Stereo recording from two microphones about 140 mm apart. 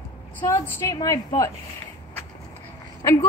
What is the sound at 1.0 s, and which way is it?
Speech, 25° left (ahead or behind).